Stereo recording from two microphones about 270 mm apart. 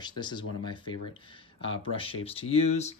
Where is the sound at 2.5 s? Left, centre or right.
Left.